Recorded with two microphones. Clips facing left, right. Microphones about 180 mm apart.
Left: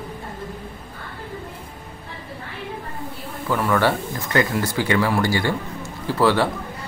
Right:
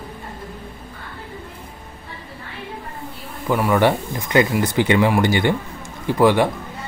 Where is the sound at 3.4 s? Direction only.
15° right (ahead or behind).